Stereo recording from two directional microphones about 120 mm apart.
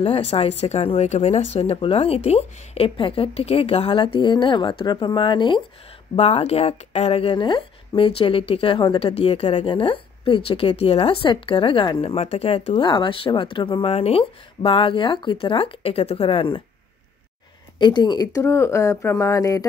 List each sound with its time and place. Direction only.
0.0 s speech: 60° left (ahead or behind)
4.0 s speech: 40° left (ahead or behind)
6.1 s speech: 60° left (ahead or behind)
8.8 s speech: 40° left (ahead or behind)
9.1 s speech: 55° left (ahead or behind)
12.0 s speech: 60° left (ahead or behind)
12.7 s speech: 40° left (ahead or behind)
17.7 s speech: 40° left (ahead or behind)
18.4 s speech: 20° left (ahead or behind)